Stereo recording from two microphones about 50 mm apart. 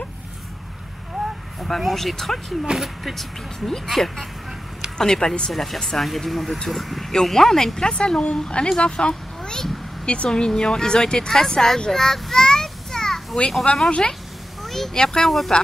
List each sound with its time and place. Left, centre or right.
1.6 s speech: centre
3.5 s speech: centre
5.5 s a woman's voice: centre
14.6 s a sound: centre
15.0 s speech: centre